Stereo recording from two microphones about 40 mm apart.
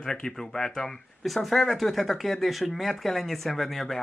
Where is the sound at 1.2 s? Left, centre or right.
Centre.